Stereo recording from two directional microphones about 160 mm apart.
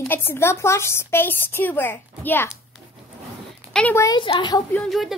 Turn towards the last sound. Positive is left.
turn(degrees=0)  # may be behind; listen again after turning